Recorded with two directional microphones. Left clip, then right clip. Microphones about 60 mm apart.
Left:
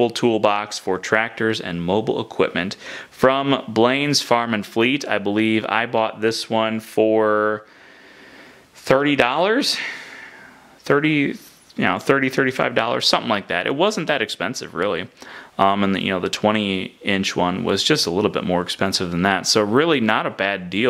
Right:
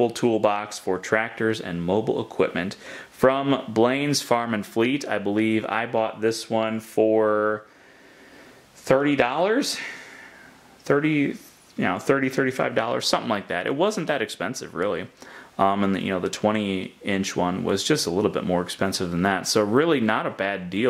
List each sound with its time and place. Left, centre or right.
0.3 s speech: left
8.8 s speech: left
17.7 s speech: centre
18.9 s speech: centre
19.1 s speech: left
19.4 s speech: centre